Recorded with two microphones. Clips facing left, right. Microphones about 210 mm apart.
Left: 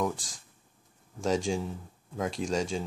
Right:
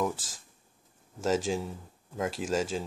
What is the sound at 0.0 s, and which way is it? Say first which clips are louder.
Speech: even; 5° right (ahead or behind).